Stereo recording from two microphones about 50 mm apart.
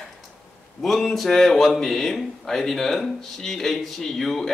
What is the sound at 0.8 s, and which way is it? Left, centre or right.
Speech, centre.